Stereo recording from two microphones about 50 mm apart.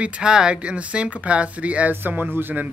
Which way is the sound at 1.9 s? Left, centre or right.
Right.